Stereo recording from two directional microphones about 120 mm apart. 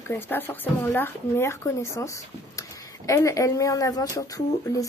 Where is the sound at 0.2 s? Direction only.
15° left (ahead or behind).